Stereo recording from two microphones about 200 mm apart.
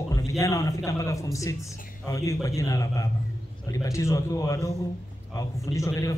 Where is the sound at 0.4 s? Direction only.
15° left (ahead or behind).